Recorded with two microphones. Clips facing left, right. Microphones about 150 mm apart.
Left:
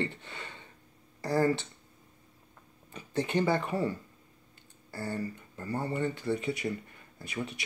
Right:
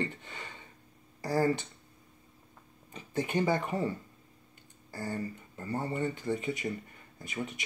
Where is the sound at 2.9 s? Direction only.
15° right (ahead or behind).